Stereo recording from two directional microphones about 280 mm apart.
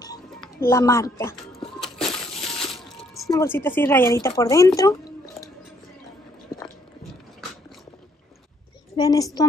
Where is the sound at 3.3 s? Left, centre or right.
Centre.